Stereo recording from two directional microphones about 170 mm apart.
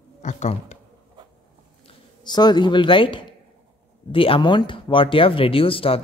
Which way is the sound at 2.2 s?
25° left (ahead or behind).